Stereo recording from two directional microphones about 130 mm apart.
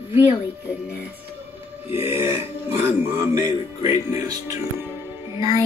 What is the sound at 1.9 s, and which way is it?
Speech, 20° right (ahead or behind).